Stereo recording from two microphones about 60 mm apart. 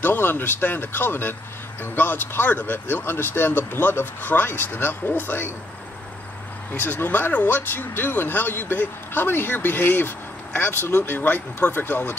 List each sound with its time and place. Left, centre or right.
0.0 s speech: left
6.7 s speech: left